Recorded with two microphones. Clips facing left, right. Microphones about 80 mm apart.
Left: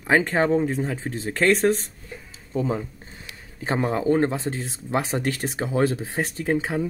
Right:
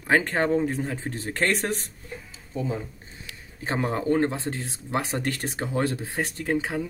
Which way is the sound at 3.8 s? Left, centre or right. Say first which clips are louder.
Left 2 dB; centre.